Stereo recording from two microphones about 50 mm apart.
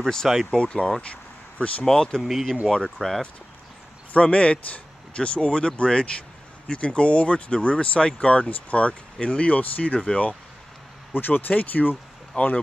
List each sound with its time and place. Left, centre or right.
0.0 s speech: centre
2.2 s speech: centre
2.7 s speech: centre
4.1 s speech: left
11.1 s speech: left
12.4 s speech: left